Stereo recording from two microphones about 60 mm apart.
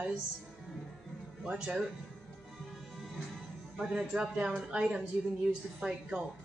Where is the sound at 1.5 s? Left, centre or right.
Centre.